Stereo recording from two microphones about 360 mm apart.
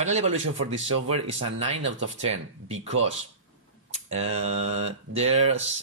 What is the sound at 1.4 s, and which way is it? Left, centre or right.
Speech, right.